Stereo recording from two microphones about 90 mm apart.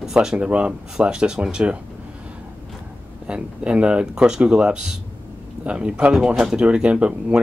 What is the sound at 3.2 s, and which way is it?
Speech, 10° right (ahead or behind).